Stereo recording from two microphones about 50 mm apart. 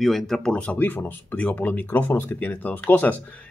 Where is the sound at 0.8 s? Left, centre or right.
Left.